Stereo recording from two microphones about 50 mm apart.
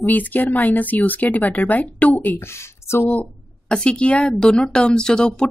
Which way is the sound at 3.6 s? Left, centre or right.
Centre.